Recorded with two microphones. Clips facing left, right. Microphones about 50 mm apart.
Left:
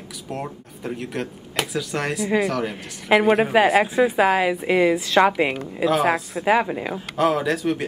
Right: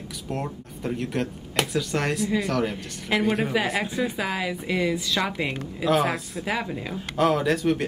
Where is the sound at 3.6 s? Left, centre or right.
Centre.